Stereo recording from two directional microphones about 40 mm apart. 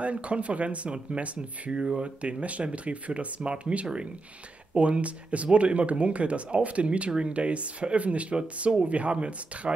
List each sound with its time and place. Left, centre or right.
0.0 s speech: right